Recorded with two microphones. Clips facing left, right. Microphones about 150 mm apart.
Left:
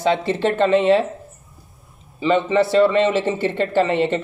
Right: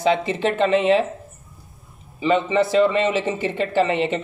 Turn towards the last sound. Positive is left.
turn(degrees=-10)  # may be behind; listen again after turning